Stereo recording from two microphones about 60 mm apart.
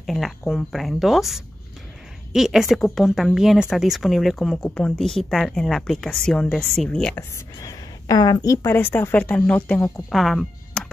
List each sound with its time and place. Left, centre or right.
0.0 s a woman's voice: centre
4.6 s speech: centre
4.9 s a woman's voice: centre
8.1 s a woman's voice: left
8.6 s speech: left
9.1 s speech: left
10.1 s a woman's voice: centre